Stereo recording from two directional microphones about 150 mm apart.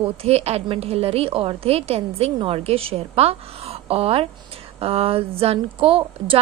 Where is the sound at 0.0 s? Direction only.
40° right (ahead or behind).